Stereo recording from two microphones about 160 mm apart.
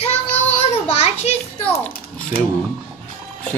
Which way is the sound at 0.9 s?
40° left (ahead or behind).